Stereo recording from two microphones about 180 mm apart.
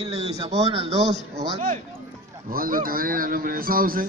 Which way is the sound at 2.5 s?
50° right (ahead or behind).